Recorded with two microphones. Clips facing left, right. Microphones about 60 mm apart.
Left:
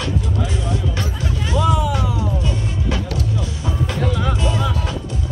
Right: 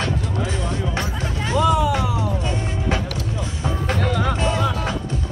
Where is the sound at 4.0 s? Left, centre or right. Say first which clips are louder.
Even; right.